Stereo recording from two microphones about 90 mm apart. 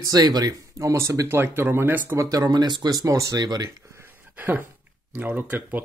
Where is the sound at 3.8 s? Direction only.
30° right (ahead or behind).